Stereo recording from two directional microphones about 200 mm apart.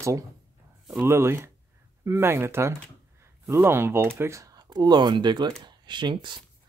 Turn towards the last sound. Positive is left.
turn(degrees=-25)  # may be behind; listen again after turning